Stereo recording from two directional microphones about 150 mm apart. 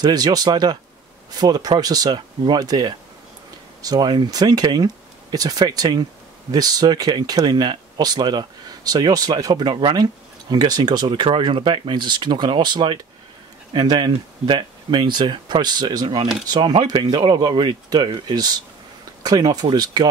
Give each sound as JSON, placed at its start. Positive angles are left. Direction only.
{"t": 0.0, "sound": "speech", "side_deg": -25}